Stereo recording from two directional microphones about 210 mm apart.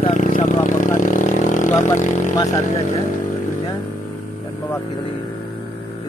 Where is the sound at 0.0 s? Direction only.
35° left (ahead or behind).